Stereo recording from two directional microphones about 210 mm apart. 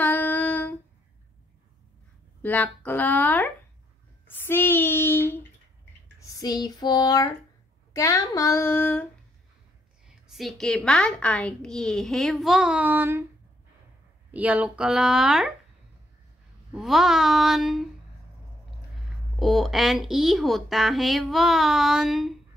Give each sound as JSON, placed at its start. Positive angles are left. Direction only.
{"t": 0.0, "sound": "humming", "side_deg": 10}
{"t": 2.4, "sound": "speech", "side_deg": 10}
{"t": 10.0, "sound": "a woman's voice", "side_deg": 0}
{"t": 14.3, "sound": "a woman's voice", "side_deg": -5}
{"t": 16.7, "sound": "a woman's voice", "side_deg": 0}
{"t": 19.4, "sound": "a woman's voice", "side_deg": 0}